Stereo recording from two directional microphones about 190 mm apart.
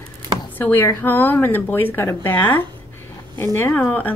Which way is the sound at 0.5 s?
10° left (ahead or behind).